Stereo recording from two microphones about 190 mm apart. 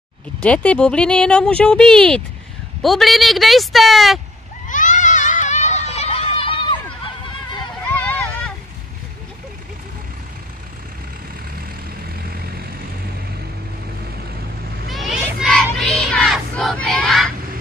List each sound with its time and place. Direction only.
0.4 s speech: 5° left (ahead or behind)
4.6 s a sound: 45° left (ahead or behind)
7.9 s vehicle: 10° left (ahead or behind)
12.2 s vehicle: 50° right (ahead or behind)
14.9 s crowd: centre (ahead or behind)